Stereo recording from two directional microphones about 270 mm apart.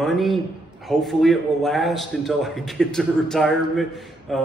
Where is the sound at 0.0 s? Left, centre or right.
Centre.